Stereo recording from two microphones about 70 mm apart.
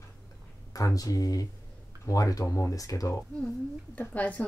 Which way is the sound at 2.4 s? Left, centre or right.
Left.